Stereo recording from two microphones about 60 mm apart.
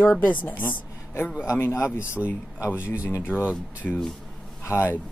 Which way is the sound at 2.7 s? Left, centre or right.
Right.